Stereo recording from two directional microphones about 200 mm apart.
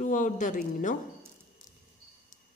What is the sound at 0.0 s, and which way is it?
Speech, 40° left (ahead or behind).